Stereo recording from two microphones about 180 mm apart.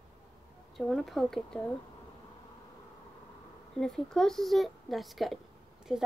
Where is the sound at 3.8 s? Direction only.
5° left (ahead or behind).